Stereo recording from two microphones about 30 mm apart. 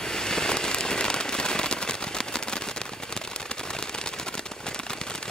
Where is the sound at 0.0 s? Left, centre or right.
Left.